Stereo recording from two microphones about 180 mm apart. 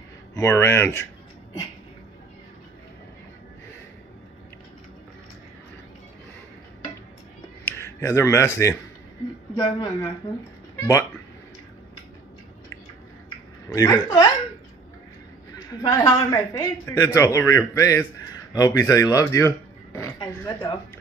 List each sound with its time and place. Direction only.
0.3 s speech: 20° left (ahead or behind)
8.0 s speech: 15° left (ahead or behind)
13.7 s speech: 20° left (ahead or behind)
15.9 s speech: 15° left (ahead or behind)